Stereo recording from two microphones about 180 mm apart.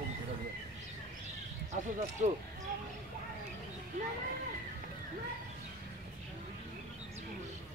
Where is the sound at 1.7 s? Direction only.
40° right (ahead or behind).